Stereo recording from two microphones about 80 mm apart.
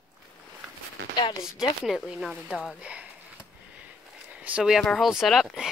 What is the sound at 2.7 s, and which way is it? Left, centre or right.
Speech, centre.